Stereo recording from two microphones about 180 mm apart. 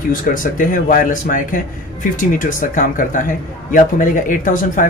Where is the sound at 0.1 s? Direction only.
50° left (ahead or behind).